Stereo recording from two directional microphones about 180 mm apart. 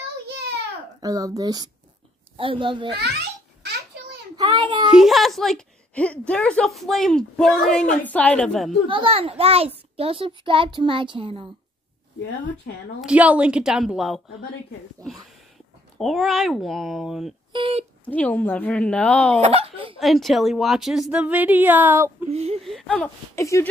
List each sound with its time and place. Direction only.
1.0 s a child's voice: 20° right (ahead or behind)
4.4 s a sound: 25° right (ahead or behind)
4.9 s a woman's voice: centre (ahead or behind)
8.8 s a child's voice: 30° right (ahead or behind)
13.0 s a woman's voice: 5° right (ahead or behind)
16.0 s a woman's voice: centre (ahead or behind)
17.5 s speech: 30° right (ahead or behind)
18.0 s a woman's voice: 10° left (ahead or behind)
19.4 s speech: 30° right (ahead or behind)
20.0 s a woman's voice: centre (ahead or behind)
22.3 s a child's voice: 35° right (ahead or behind)
22.6 s a woman's voice: centre (ahead or behind)
23.0 s a woman's voice: 15° left (ahead or behind)